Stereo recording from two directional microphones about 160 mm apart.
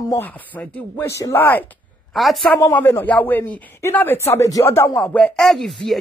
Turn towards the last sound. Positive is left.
turn(degrees=0)  # may be behind; listen again after turning